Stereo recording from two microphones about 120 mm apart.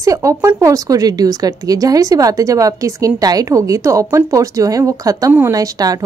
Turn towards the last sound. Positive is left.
turn(degrees=-30)  # may be behind; listen again after turning